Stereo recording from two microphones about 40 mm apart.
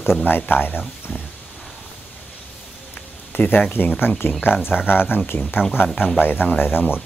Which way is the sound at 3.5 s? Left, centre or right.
Left.